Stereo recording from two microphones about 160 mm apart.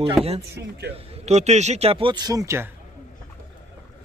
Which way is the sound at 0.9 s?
45° right (ahead or behind).